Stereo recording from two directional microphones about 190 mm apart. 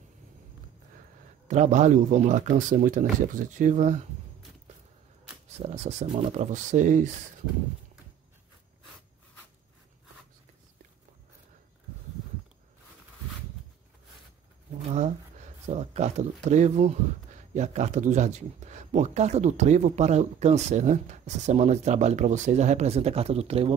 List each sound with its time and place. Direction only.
1.5 s speech: 40° right (ahead or behind)
5.6 s speech: 35° right (ahead or behind)
15.0 s speech: 40° right (ahead or behind)